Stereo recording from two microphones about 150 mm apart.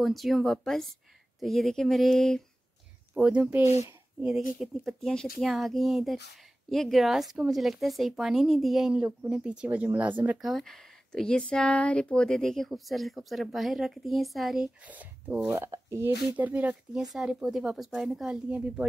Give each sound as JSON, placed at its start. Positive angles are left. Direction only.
{"t": 0.0, "sound": "speech", "side_deg": 0}
{"t": 3.2, "sound": "speech", "side_deg": -10}
{"t": 4.6, "sound": "speech", "side_deg": 0}